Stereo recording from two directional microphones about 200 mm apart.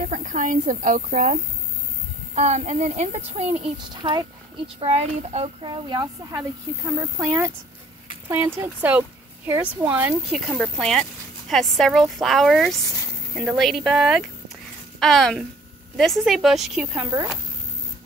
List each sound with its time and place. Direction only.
0.1 s a woman's voice: 40° right (ahead or behind); by 4.3 s 20° right (ahead or behind)
4.7 s speech: 30° right (ahead or behind); by 17.1 s 5° right (ahead or behind)